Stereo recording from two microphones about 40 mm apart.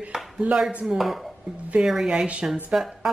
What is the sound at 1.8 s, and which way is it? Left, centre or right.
Speech, centre.